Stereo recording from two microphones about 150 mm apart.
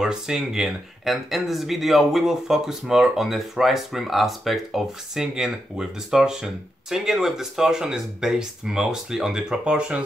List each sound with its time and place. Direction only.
0.0 s speech: 5° right (ahead or behind)